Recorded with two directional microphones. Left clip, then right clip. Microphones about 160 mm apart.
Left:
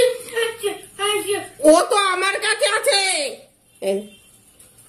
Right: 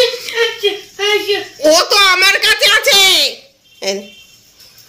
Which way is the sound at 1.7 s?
10° left (ahead or behind).